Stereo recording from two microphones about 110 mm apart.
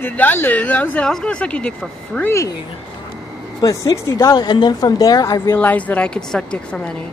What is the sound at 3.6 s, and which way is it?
Speech, 30° left (ahead or behind).